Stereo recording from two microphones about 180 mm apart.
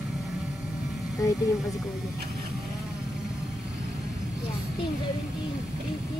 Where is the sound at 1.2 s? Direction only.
20° left (ahead or behind).